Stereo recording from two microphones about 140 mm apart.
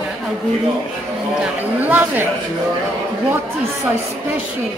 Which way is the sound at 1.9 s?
15° right (ahead or behind).